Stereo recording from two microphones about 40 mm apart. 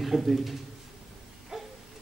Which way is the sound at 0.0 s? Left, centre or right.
Centre.